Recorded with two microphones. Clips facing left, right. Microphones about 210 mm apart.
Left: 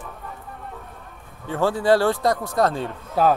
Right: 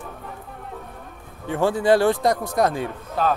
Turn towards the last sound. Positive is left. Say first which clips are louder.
# left 4 dB
turn(degrees=10)  # may be behind; listen again after turning